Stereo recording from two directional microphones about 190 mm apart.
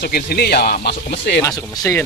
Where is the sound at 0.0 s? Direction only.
55° left (ahead or behind).